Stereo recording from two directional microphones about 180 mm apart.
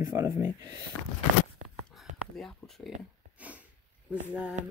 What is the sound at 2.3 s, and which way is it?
Speech, centre (ahead or behind).